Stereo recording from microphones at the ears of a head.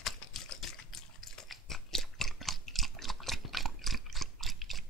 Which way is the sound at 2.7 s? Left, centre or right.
Centre.